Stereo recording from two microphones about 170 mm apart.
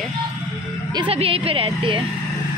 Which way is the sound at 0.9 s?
30° right (ahead or behind).